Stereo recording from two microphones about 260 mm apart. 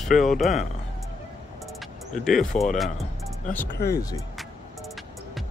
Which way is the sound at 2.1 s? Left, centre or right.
Centre.